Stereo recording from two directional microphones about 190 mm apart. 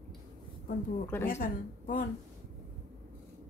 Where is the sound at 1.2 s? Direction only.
45° left (ahead or behind).